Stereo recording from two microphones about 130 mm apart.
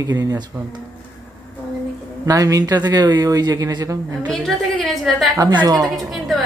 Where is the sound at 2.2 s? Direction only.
25° right (ahead or behind).